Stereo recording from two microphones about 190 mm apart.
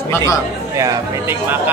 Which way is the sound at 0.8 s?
15° right (ahead or behind).